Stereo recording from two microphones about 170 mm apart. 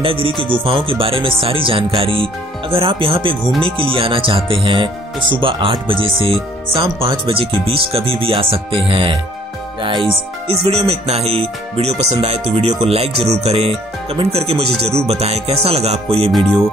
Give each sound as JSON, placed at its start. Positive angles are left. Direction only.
{"t": 0.0, "sound": "speech", "side_deg": -30}